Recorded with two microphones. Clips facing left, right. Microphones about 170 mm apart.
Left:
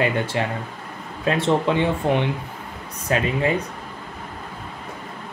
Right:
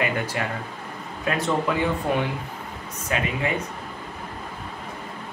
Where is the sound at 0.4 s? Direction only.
25° left (ahead or behind).